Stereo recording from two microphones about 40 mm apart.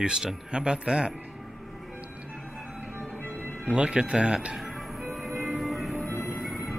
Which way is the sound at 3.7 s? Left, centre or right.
Right.